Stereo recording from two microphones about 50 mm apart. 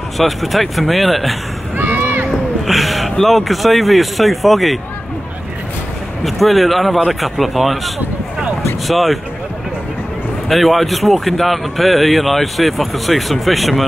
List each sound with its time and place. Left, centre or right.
0.2 s a man's voice: centre
1.8 s run: right
2.6 s speech: centre
6.2 s a man's voice: centre
10.5 s a man's voice: centre